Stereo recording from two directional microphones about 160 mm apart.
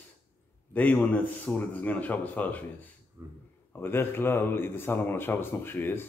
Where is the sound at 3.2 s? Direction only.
20° right (ahead or behind).